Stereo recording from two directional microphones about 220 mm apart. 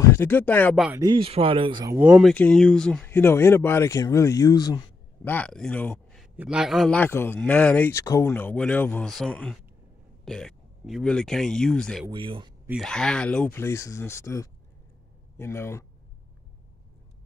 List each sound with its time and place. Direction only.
0.1 s speech: 10° left (ahead or behind)
1.0 s speech: 25° right (ahead or behind)
2.0 s speech: 5° right (ahead or behind)
2.3 s speech: 5° left (ahead or behind)
5.3 s speech: 5° left (ahead or behind)
6.3 s speech: 5° right (ahead or behind)
12.1 s speech: 20° right (ahead or behind)
12.6 s speech: centre (ahead or behind)